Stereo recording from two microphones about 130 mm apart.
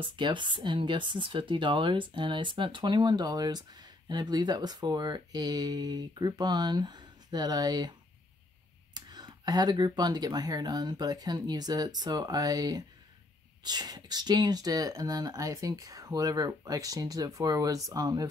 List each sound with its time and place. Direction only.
0.0 s speech: 40° right (ahead or behind)
8.9 s speech: 30° right (ahead or behind)